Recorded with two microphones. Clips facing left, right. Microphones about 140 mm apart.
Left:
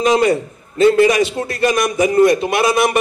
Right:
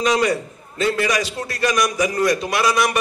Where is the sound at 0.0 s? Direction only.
25° left (ahead or behind).